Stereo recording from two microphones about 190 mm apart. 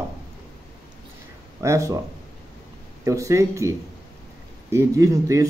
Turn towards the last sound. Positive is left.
turn(degrees=-15)  # may be behind; listen again after turning